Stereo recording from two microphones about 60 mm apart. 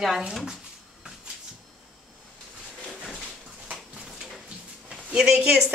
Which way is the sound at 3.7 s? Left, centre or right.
Centre.